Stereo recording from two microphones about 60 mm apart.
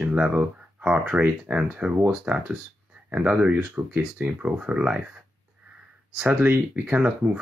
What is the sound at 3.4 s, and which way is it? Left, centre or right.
Speech, right.